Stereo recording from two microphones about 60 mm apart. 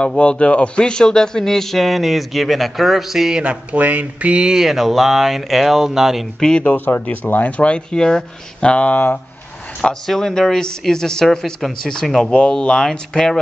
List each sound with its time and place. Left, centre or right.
0.0 s speech: centre
6.4 s speech: centre
9.8 s speech: centre